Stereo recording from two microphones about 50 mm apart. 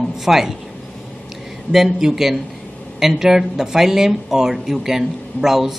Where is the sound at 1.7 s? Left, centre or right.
Centre.